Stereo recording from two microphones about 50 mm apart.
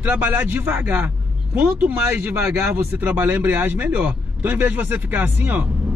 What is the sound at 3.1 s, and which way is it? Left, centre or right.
Speech, right.